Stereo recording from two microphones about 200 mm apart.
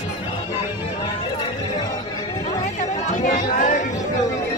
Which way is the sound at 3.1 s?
40° left (ahead or behind).